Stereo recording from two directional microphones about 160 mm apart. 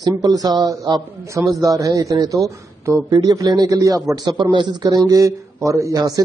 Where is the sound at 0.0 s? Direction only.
25° right (ahead or behind).